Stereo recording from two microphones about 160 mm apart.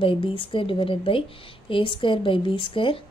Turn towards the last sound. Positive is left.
turn(degrees=35)  # may be behind; listen again after turning